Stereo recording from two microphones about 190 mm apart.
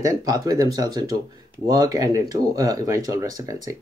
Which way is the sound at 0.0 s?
20° right (ahead or behind).